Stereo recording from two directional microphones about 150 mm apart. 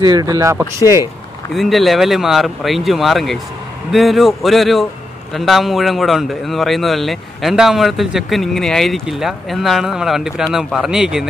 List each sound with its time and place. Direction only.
0.0 s speech: 25° right (ahead or behind)
1.5 s speech: centre (ahead or behind)